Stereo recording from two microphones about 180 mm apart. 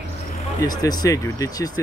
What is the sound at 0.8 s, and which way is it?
Speech, 20° left (ahead or behind).